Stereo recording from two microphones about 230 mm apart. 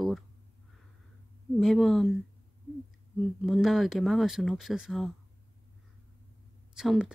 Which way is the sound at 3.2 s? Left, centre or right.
Centre.